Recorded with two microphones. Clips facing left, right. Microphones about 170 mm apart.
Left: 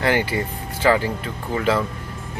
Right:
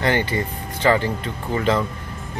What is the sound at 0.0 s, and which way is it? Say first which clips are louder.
Speech: even; 5° left (ahead or behind).